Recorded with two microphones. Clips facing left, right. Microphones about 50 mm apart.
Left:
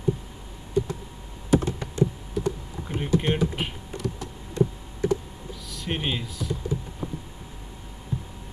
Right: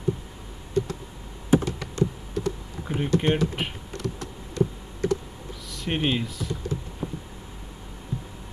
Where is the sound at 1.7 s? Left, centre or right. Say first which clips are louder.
Left 1 dB; left.